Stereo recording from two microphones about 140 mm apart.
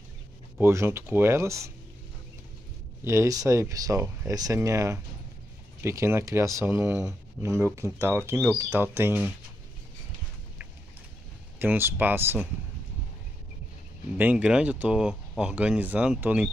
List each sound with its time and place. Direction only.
0.6 s speech: 15° right (ahead or behind)
3.0 s speech: 20° right (ahead or behind)
11.6 s speech: 15° right (ahead or behind)
14.1 s speech: 10° right (ahead or behind)